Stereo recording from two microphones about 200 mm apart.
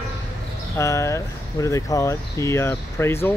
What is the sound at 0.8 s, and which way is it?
Speech, 15° left (ahead or behind).